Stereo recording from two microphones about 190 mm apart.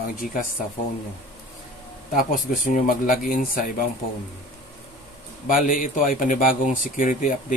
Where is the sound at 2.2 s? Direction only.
45° left (ahead or behind).